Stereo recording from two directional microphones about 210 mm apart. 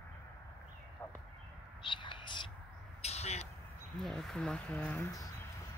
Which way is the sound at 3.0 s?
30° left (ahead or behind).